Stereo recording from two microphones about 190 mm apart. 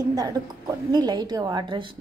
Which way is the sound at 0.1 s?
20° right (ahead or behind).